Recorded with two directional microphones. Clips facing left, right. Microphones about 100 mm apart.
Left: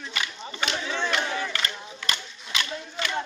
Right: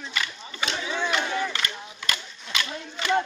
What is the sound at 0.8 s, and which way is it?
Battle cry, 10° right (ahead or behind).